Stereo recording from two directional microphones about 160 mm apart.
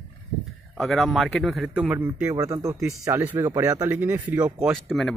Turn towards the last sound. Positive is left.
turn(degrees=0)  # may be behind; listen again after turning